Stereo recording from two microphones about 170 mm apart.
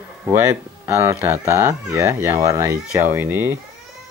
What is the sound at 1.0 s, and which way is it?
Speech, 15° right (ahead or behind).